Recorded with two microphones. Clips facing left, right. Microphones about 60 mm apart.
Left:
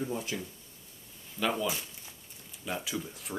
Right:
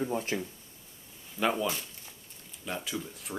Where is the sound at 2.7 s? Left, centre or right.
Centre.